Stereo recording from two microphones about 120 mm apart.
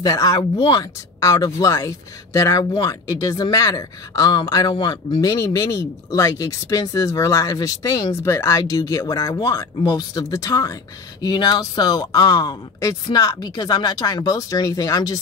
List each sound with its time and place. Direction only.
0.0 s speech: 30° left (ahead or behind)
0.4 s speech: 45° left (ahead or behind)
1.2 s speech: 30° left (ahead or behind)